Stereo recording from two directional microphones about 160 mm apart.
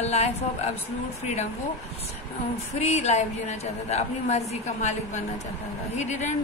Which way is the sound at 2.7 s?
45° left (ahead or behind).